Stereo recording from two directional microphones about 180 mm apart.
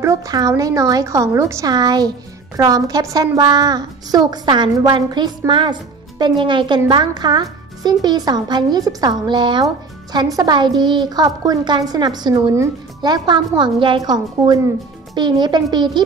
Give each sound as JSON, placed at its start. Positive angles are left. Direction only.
{"t": 0.0, "sound": "a woman's voice", "side_deg": -20}